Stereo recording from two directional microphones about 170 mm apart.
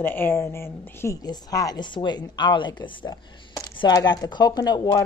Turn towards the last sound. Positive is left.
turn(degrees=25)  # may be behind; listen again after turning